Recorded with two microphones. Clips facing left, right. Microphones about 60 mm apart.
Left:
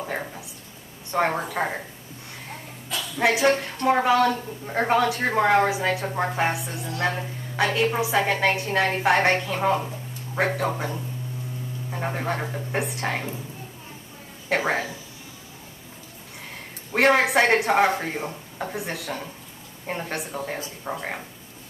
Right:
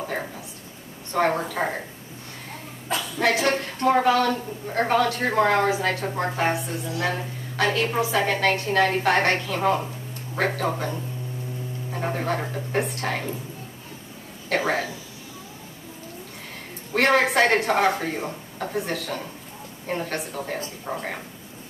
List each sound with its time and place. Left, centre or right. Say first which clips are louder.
1.1 s a woman's voice: right 1 dB; centre
3.2 s a woman's voice: left 2 dB; centre
11.9 s a woman's voice: right 1 dB; centre
14.5 s a woman's voice: even; centre
16.9 s a woman's voice: left 1 dB; centre